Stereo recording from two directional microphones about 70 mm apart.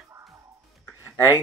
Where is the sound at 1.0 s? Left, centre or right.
Left.